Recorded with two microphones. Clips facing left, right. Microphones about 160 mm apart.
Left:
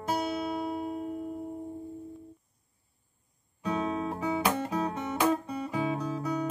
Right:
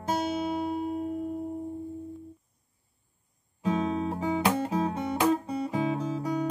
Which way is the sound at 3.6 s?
30° right (ahead or behind).